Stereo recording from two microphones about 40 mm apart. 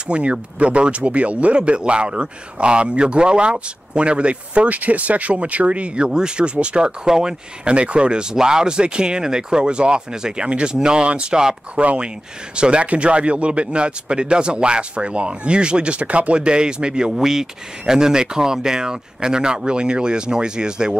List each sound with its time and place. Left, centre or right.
0.1 s speech: right
7.7 s speech: right
11.7 s speech: right